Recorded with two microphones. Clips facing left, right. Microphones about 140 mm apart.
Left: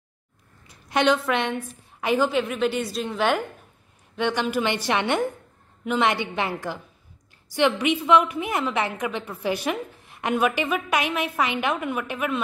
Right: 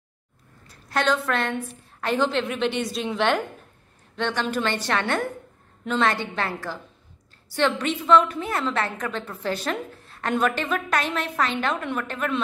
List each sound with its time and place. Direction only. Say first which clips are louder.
0.7 s a woman's voice: left 3 dB; 15° left (ahead or behind)